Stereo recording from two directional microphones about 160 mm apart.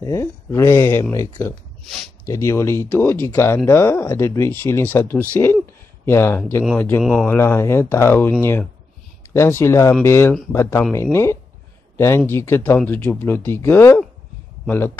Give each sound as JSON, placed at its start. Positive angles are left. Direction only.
{"t": 0.0, "sound": "speech", "side_deg": 20}
{"t": 7.0, "sound": "speech", "side_deg": 0}
{"t": 7.2, "sound": "speech", "side_deg": 15}